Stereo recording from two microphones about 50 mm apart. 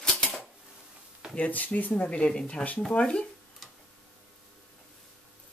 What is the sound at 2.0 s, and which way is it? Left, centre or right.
Speech, left.